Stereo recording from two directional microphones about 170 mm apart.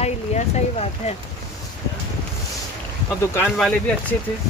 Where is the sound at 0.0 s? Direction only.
40° left (ahead or behind).